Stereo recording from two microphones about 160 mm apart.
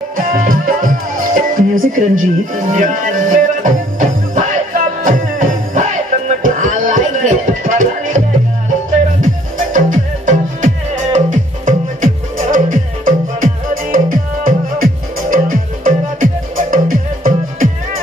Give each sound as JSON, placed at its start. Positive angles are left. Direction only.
{"t": 0.2, "sound": "music", "side_deg": -60}
{"t": 9.2, "sound": "music", "side_deg": -50}